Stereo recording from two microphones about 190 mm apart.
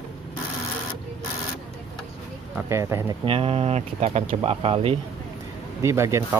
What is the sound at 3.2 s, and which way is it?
Speech, 30° right (ahead or behind).